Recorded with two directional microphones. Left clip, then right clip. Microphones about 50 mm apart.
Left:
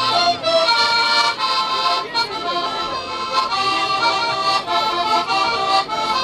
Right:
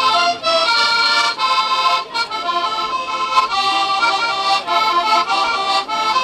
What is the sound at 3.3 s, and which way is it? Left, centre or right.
Accordion, right.